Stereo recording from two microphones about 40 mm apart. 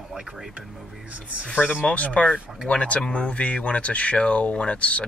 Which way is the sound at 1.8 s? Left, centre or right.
Left.